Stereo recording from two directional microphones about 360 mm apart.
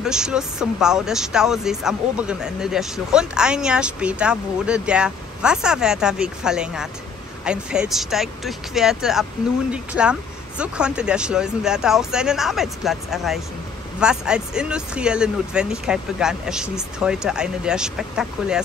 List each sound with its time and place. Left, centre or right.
0.0 s speech: centre